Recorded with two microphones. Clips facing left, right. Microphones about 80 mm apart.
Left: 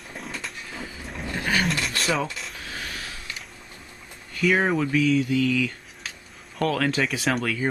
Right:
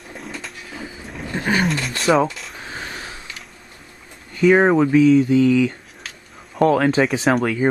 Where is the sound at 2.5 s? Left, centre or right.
Right.